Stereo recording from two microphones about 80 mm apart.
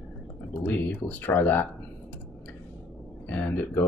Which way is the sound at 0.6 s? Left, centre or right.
Centre.